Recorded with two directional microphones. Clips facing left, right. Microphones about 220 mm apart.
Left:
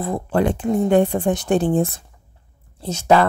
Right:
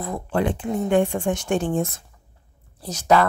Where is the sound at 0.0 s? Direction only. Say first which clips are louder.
Left 4 dB; 35° left (ahead or behind).